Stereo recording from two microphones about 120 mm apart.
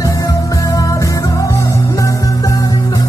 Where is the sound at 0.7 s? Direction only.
25° left (ahead or behind).